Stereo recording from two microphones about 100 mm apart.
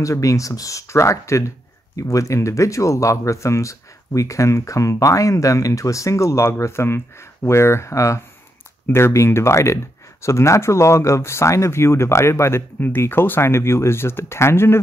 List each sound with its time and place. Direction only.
0.0 s speech: 35° left (ahead or behind)